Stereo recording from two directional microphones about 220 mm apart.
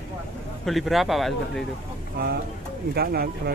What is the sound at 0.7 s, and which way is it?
Speech, centre (ahead or behind).